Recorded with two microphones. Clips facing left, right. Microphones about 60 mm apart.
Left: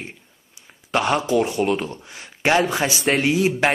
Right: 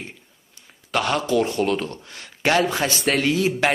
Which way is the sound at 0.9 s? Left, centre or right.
Centre.